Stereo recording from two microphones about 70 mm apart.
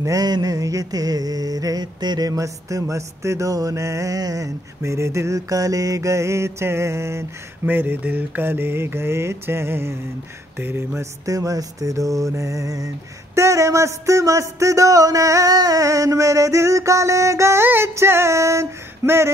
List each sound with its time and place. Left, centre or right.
0.0 s mantra: right
7.6 s mantra: right
10.6 s a sound: right
11.0 s mantra: right